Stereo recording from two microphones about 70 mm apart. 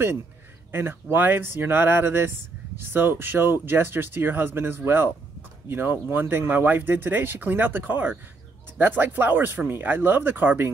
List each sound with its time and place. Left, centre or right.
0.7 s speech: right